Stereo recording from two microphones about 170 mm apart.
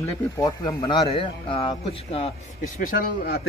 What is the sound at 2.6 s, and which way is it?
Speech, 50° left (ahead or behind).